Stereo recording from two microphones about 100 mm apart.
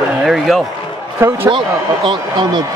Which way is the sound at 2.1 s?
50° right (ahead or behind).